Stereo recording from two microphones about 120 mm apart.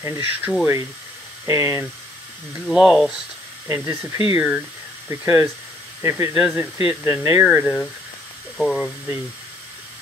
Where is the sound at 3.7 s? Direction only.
15° right (ahead or behind).